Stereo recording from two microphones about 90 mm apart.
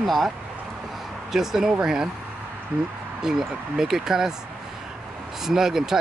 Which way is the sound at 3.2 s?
5° right (ahead or behind).